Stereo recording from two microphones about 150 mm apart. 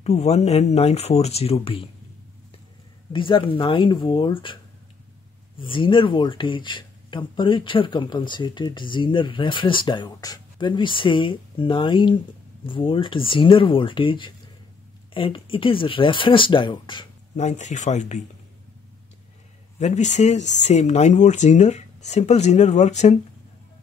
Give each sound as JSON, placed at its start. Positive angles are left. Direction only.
{"t": 0.0, "sound": "speech", "side_deg": 45}
{"t": 3.1, "sound": "speech", "side_deg": 35}
{"t": 5.6, "sound": "speech", "side_deg": 35}
{"t": 17.4, "sound": "speech", "side_deg": 50}
{"t": 19.8, "sound": "speech", "side_deg": 50}